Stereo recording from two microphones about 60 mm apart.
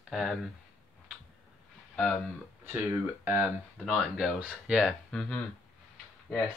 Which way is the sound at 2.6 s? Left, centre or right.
Right.